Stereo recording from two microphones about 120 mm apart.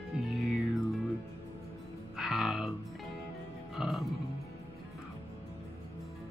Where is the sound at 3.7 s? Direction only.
Centre (ahead or behind).